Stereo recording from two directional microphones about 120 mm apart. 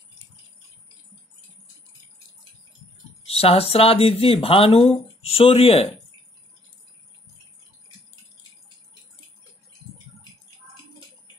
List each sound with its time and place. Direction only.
3.3 s speech: 55° left (ahead or behind)